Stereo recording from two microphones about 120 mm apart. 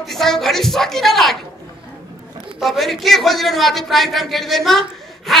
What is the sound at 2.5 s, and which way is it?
A man's voice, centre (ahead or behind).